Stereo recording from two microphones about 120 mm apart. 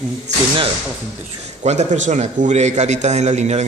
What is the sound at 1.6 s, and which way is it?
A man's voice, 75° right (ahead or behind).